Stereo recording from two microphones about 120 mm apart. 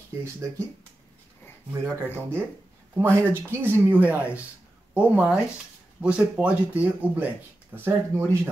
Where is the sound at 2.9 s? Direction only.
20° right (ahead or behind).